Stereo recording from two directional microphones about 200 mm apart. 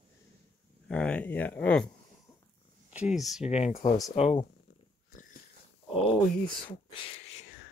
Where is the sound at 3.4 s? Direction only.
30° left (ahead or behind).